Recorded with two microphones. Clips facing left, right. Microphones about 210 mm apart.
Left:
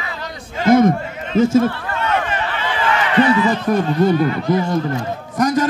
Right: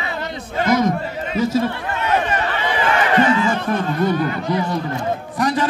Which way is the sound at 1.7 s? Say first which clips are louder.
Even; 20° right (ahead or behind).